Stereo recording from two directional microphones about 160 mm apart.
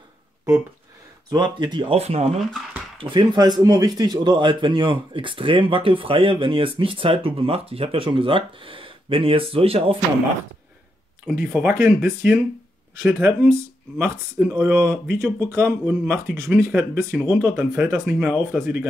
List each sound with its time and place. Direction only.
1.3 s speech: 25° right (ahead or behind)
2.3 s speech: centre (ahead or behind)
3.0 s speech: 30° right (ahead or behind)
11.2 s speech: 10° right (ahead or behind)